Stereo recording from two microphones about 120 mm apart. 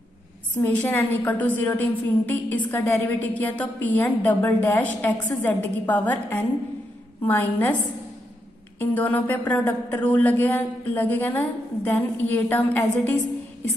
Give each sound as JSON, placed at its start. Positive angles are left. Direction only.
{"t": 0.6, "sound": "a woman's voice", "side_deg": 15}
{"t": 8.7, "sound": "a woman's voice", "side_deg": 15}